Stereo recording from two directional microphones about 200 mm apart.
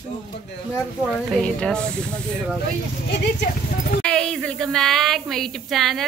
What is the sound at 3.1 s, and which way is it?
Speech, 55° left (ahead or behind).